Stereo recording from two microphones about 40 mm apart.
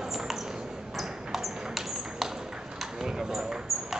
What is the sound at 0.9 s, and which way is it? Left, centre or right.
Ping, centre.